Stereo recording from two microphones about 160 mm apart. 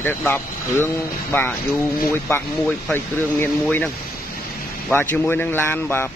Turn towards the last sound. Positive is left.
turn(degrees=15)  # may be behind; listen again after turning